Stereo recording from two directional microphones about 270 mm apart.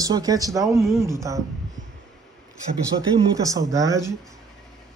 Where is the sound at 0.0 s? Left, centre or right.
Centre.